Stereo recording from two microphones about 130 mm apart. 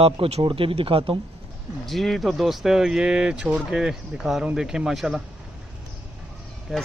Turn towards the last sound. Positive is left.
turn(degrees=-5)  # may be behind; listen again after turning